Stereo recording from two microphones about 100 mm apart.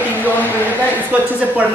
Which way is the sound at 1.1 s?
15° right (ahead or behind).